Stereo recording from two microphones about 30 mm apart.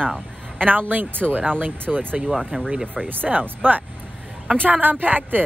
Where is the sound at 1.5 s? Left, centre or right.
Right.